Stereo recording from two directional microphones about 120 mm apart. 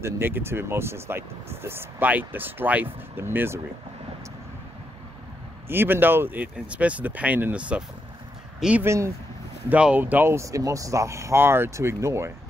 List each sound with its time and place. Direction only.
0.0 s speech: 20° right (ahead or behind)
5.7 s speech: 15° right (ahead or behind)
8.8 s speech: 25° right (ahead or behind)
9.7 s speech: 10° right (ahead or behind)